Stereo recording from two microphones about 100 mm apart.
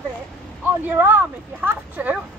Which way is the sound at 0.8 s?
20° right (ahead or behind).